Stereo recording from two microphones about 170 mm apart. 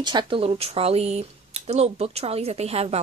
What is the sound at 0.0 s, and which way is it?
Speech, 25° right (ahead or behind).